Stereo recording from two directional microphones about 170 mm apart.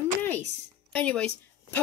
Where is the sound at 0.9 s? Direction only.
5° left (ahead or behind).